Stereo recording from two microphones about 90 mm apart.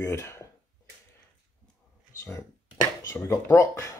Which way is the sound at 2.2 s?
30° left (ahead or behind).